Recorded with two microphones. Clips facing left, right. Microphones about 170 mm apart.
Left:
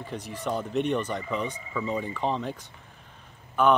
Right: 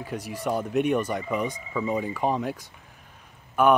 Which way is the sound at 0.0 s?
10° right (ahead or behind).